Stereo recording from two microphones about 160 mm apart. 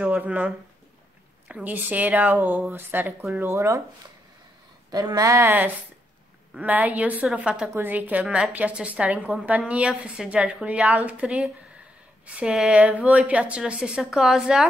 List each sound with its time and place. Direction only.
0.0 s speech: 10° right (ahead or behind)
1.5 s a woman's voice: 10° right (ahead or behind)
4.9 s a woman's voice: 25° right (ahead or behind); by 14.7 s 5° right (ahead or behind)